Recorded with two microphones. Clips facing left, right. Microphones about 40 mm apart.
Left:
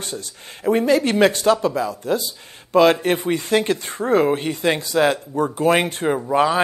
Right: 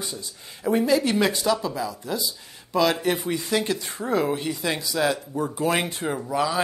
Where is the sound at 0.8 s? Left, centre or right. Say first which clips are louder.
Left 6 dB; left.